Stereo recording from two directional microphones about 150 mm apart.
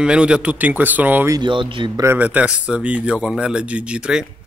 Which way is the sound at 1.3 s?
30° right (ahead or behind).